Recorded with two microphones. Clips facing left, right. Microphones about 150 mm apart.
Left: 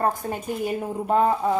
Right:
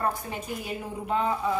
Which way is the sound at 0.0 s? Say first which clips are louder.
Left 5 dB; 45° left (ahead or behind).